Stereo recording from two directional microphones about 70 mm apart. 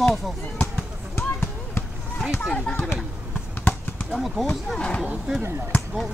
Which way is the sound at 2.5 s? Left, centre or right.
Centre.